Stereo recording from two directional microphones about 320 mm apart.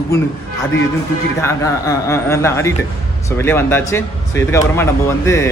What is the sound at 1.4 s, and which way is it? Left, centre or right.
Speech, centre.